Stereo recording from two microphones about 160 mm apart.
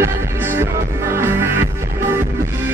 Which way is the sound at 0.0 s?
15° right (ahead or behind).